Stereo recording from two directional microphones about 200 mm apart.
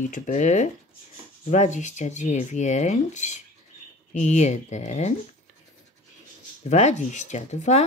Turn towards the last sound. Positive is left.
turn(degrees=35)  # may be behind; listen again after turning